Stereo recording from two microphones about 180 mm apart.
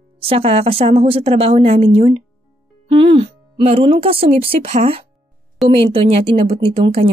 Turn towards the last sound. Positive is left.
turn(degrees=-30)  # may be behind; listen again after turning